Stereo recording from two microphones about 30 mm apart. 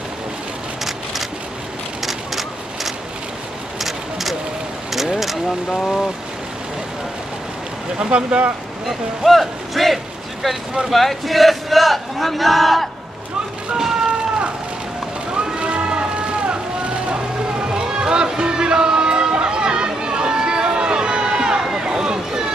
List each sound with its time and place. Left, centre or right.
2.0 s a sound: centre
4.9 s vehicle: centre
5.7 s speech: centre
8.1 s speech: right
8.8 s speech: centre
15.6 s music: right
16.2 s boat: right
17.1 s a sound: right
21.7 s boat: right